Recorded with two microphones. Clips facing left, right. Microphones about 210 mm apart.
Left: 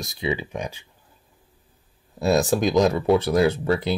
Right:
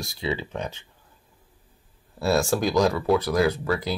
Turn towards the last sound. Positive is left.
turn(degrees=25)  # may be behind; listen again after turning